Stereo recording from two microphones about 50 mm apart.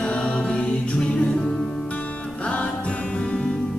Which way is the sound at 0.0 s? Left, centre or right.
Left.